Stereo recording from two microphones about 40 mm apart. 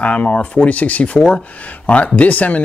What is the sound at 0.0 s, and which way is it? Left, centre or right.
Speech, left.